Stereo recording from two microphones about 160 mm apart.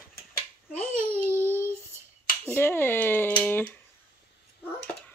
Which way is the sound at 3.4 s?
10° left (ahead or behind).